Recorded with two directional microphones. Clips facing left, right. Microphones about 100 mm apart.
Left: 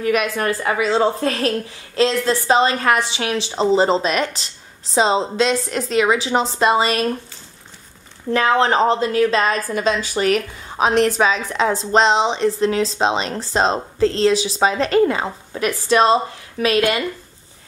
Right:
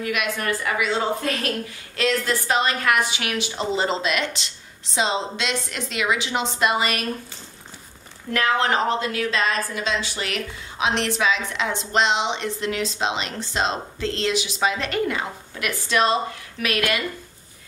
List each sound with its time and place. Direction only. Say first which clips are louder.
0.0 s a woman's voice: left 6 dB; 35° left (ahead or behind)
8.3 s a woman's voice: left 5 dB; 30° left (ahead or behind)